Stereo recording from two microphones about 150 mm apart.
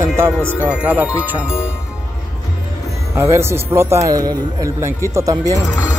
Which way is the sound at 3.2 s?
20° right (ahead or behind).